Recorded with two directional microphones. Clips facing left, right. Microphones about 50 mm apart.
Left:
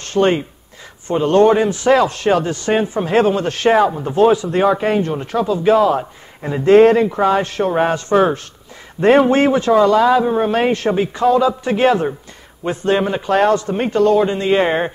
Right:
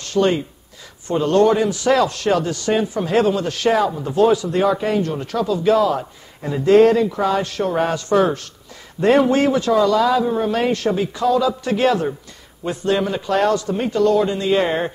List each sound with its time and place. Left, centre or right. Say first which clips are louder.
0.0 s a man's voice: left 2 dB; left